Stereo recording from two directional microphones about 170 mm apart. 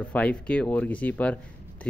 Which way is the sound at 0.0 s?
5° left (ahead or behind).